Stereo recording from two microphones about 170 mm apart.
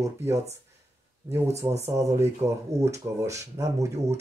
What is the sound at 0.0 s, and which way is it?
Speech, 15° right (ahead or behind).